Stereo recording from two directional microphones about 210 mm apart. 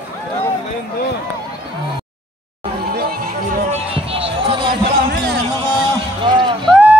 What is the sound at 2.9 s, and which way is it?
Music, 45° right (ahead or behind).